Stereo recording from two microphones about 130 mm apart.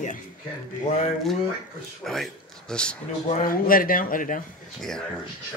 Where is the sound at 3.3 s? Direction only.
90° left.